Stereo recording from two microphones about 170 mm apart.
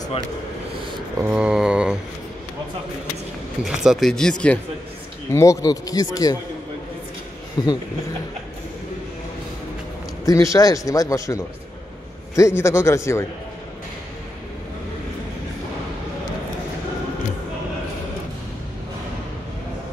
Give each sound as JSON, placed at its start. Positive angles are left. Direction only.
{"t": 1.2, "sound": "speech", "side_deg": -10}
{"t": 3.6, "sound": "speech", "side_deg": 0}
{"t": 5.3, "sound": "speech", "side_deg": 20}
{"t": 7.6, "sound": "speech", "side_deg": 25}
{"t": 10.2, "sound": "a man's voice", "side_deg": 20}